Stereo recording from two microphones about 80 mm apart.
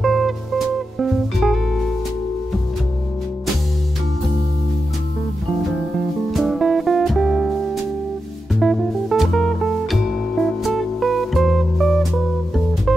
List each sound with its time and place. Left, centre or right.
0.0 s music: centre
5.6 s music: centre